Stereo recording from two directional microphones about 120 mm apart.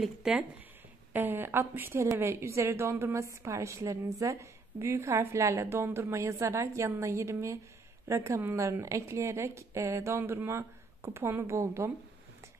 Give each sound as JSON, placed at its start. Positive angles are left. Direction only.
{"t": 0.0, "sound": "speech", "side_deg": -5}
{"t": 1.1, "sound": "a woman's voice", "side_deg": -15}